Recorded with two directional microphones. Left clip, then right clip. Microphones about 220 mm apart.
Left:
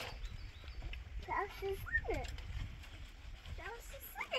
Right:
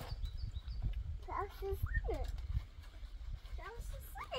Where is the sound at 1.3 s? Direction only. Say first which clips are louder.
Left 3 dB; 15° left (ahead or behind).